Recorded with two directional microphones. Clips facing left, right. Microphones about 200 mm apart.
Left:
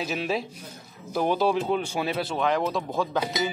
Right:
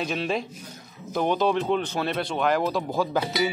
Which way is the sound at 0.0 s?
5° left (ahead or behind).